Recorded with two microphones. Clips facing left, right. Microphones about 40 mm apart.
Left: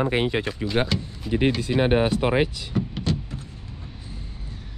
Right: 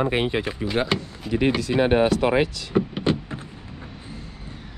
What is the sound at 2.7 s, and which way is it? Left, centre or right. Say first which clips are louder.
Power windows: right 5 dB; right.